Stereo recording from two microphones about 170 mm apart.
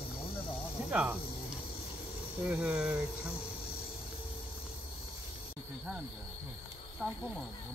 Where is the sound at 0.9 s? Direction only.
5° right (ahead or behind).